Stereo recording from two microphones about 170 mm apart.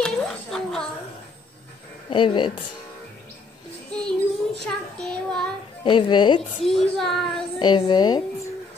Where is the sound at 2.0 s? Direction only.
30° left (ahead or behind).